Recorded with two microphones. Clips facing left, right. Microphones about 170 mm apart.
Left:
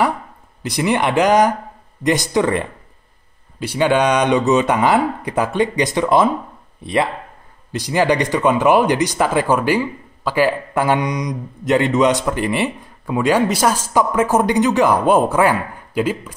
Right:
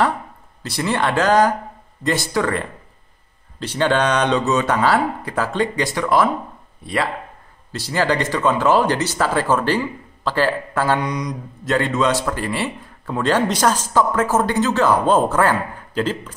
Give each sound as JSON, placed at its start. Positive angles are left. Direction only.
{"t": 0.6, "sound": "speech", "side_deg": 15}